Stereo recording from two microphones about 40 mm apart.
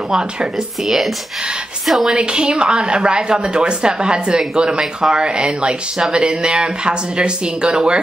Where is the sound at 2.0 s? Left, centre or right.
Right.